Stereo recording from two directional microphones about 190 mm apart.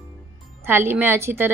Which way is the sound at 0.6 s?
10° right (ahead or behind).